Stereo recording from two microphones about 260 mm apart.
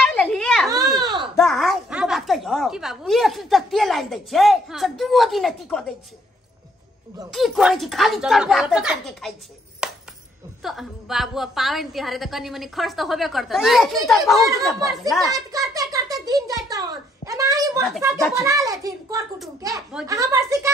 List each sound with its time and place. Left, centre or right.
0.0 s children playing: centre
0.7 s a sound: centre
1.3 s a woman's voice: centre
7.3 s a woman's voice: centre
9.8 s chopping: centre
10.6 s a woman's voice: centre
15.3 s a child's voice: centre